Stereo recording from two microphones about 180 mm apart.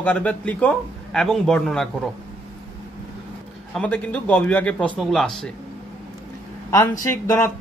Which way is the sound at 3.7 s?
10° left (ahead or behind).